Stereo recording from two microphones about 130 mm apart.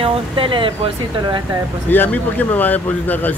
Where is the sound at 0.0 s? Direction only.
45° right (ahead or behind).